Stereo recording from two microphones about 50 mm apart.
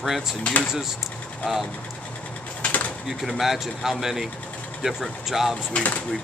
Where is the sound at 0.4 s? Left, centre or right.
Left.